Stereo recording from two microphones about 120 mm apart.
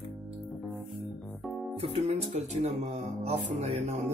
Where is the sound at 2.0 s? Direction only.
75° right (ahead or behind).